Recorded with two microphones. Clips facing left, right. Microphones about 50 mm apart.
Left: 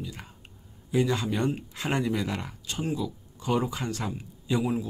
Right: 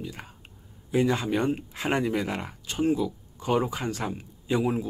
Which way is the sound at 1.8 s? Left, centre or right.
Right.